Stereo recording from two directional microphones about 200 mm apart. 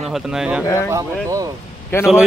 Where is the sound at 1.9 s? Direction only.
10° left (ahead or behind).